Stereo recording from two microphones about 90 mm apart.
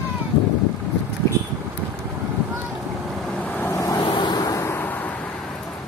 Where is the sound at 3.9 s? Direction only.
70° left (ahead or behind).